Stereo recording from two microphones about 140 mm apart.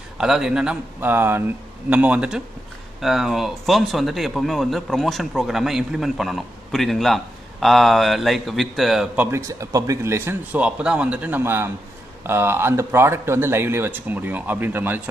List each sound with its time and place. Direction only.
0.2 s speech: 5° right (ahead or behind)
9.4 s speech: 25° right (ahead or behind)